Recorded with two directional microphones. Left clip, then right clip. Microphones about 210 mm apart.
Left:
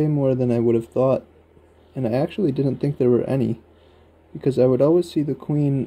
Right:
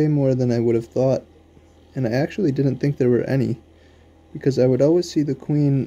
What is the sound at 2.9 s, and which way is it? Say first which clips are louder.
Speech: left 1 dB; centre (ahead or behind).